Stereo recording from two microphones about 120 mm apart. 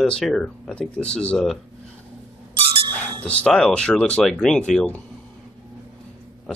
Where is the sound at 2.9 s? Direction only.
10° left (ahead or behind).